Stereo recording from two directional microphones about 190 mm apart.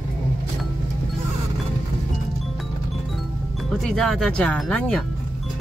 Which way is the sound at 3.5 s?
Centre (ahead or behind).